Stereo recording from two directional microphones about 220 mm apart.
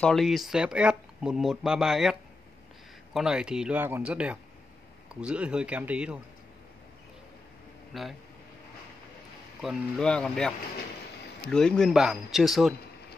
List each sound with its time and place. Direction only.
0.0 s speech: centre (ahead or behind)
7.9 s speech: centre (ahead or behind)
9.6 s speech: centre (ahead or behind)